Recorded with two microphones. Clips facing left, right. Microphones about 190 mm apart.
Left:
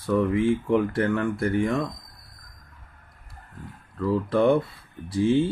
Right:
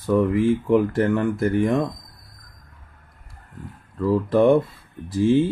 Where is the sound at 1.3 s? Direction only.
20° right (ahead or behind).